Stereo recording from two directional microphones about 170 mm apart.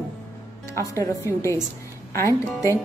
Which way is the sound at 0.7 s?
15° left (ahead or behind).